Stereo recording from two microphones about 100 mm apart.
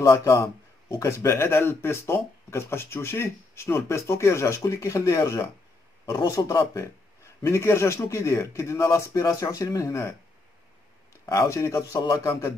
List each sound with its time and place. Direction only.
0.0 s speech: 30° left (ahead or behind)
11.2 s speech: 30° left (ahead or behind)